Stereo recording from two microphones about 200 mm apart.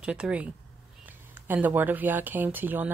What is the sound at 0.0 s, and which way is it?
A woman's voice, 5° right (ahead or behind).